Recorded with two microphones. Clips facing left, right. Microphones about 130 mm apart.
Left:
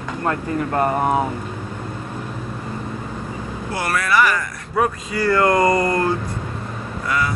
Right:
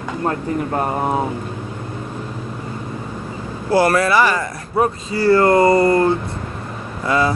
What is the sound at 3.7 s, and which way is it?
Speech, 30° right (ahead or behind).